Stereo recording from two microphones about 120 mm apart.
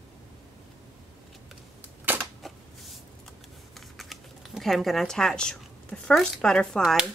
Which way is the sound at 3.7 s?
Centre (ahead or behind).